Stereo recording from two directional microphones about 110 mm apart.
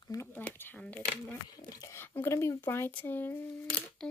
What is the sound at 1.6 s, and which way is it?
Speech, 35° left (ahead or behind).